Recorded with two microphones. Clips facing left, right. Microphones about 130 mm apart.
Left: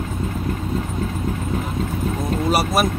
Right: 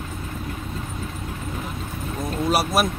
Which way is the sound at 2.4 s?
Centre (ahead or behind).